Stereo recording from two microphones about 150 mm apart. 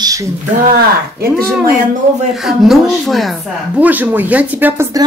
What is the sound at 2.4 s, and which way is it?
A woman's voice, centre (ahead or behind).